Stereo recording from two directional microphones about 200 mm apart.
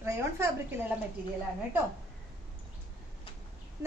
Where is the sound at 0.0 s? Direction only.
15° right (ahead or behind).